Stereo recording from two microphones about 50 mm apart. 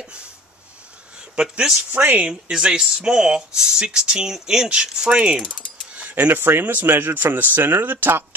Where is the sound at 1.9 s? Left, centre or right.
Right.